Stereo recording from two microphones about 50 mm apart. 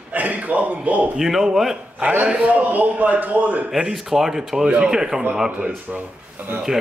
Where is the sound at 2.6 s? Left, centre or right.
Right.